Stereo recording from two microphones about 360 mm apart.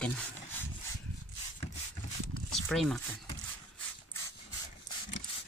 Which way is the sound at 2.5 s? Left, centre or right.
Centre.